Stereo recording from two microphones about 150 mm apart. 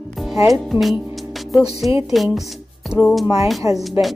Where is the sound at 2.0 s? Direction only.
Centre (ahead or behind).